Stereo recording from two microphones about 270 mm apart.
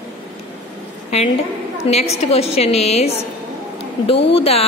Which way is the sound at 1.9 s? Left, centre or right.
Left.